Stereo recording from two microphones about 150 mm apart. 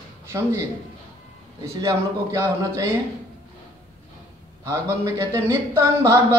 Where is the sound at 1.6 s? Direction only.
20° right (ahead or behind).